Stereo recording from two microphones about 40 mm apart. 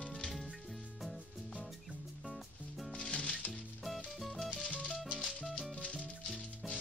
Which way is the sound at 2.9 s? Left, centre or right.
Left.